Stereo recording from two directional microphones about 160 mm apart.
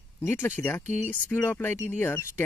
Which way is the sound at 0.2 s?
15° left (ahead or behind).